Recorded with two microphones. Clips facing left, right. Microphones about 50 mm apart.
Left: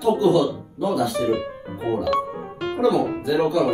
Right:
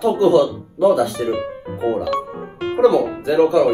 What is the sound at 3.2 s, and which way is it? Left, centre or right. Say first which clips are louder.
Speech: right 8 dB; right.